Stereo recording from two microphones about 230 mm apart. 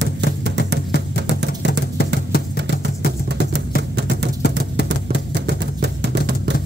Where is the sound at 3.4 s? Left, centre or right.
Right.